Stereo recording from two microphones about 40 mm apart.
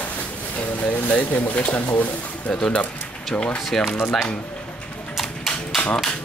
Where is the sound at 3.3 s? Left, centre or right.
Left.